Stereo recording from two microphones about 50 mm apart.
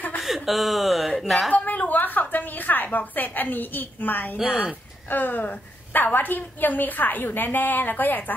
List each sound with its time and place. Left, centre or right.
0.2 s speech: centre
1.5 s a woman's voice: left